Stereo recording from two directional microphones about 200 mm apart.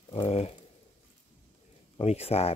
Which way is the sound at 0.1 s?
30° left (ahead or behind).